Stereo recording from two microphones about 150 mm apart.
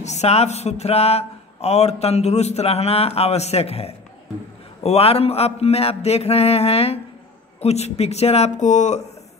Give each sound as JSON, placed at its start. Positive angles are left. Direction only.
{"t": 0.0, "sound": "speech", "side_deg": 45}